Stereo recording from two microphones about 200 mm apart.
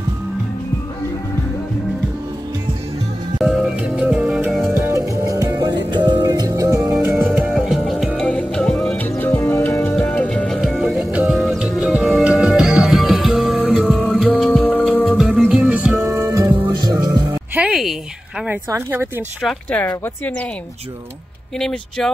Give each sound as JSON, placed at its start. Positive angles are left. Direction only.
{"t": 3.4, "sound": "music", "side_deg": -5}
{"t": 17.6, "sound": "a sound", "side_deg": 0}
{"t": 18.5, "sound": "speech", "side_deg": -10}
{"t": 19.4, "sound": "speech", "side_deg": 5}
{"t": 21.5, "sound": "speech", "side_deg": 5}